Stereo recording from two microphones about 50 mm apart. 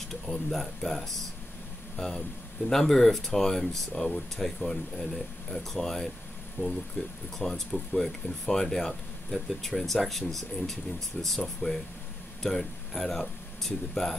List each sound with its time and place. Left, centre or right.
0.1 s speech: centre
6.6 s speech: left
7.3 s speech: centre